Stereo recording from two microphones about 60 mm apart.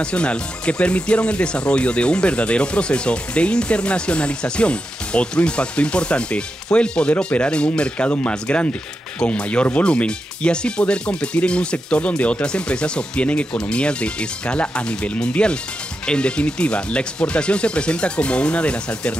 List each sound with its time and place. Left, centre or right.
0.0 s speech: centre